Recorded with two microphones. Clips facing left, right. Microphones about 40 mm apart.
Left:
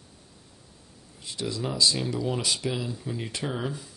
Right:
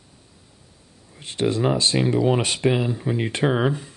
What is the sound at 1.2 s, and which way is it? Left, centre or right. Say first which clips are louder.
Speech: right 10 dB; right.